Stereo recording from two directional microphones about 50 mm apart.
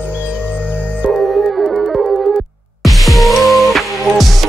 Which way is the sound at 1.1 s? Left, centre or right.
Centre.